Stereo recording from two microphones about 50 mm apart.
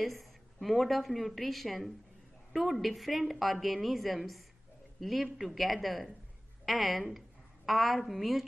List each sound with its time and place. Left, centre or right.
0.0 s a woman's voice: centre